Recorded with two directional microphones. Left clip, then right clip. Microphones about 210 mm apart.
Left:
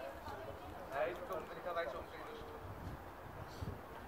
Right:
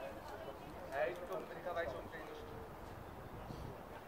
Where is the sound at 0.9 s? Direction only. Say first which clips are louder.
Even; 5° right (ahead or behind).